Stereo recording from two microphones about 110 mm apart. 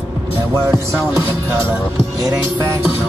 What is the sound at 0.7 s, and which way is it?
Music, 25° right (ahead or behind).